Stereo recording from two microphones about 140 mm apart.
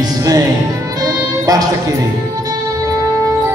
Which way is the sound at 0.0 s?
25° right (ahead or behind).